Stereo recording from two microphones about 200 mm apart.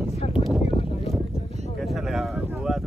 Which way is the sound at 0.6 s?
30° left (ahead or behind).